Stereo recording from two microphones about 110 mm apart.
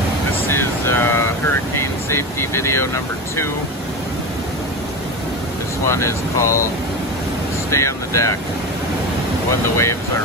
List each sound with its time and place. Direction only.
0.5 s vehicle: 20° left (ahead or behind)
2.0 s speech: 25° left (ahead or behind)
5.9 s speech: 25° left (ahead or behind)
7.7 s speech: 25° left (ahead or behind)
9.5 s speech: 25° left (ahead or behind)